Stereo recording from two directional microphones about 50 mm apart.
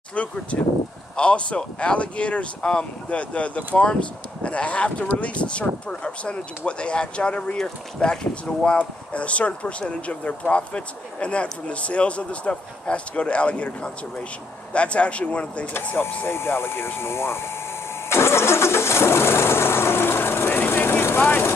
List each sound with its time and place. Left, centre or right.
0.1 s speech: left
16.3 s speech: left
18.1 s vehicle: left